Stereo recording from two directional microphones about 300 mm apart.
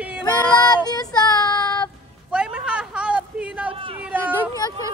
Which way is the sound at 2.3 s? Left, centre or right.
Centre.